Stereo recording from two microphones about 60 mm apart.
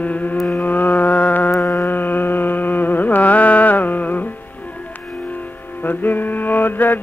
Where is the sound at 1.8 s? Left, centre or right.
Left.